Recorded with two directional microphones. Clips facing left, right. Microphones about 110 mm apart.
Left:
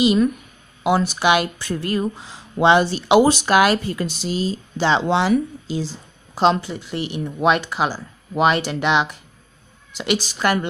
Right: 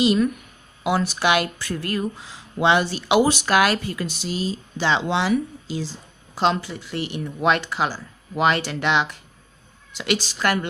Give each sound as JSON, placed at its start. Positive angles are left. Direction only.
{"t": 0.0, "sound": "speech", "side_deg": 15}